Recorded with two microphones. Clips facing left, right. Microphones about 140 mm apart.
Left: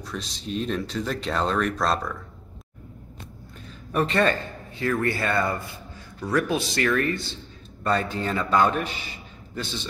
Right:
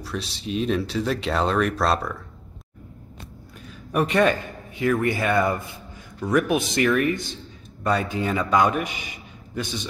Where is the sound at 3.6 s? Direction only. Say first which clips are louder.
Right 1 dB; 10° right (ahead or behind).